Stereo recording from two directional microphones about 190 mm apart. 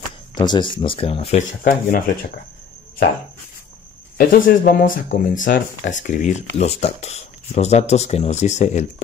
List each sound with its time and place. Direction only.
0.3 s speech: 25° left (ahead or behind)
1.6 s speech: 45° left (ahead or behind)
4.2 s speech: 50° left (ahead or behind)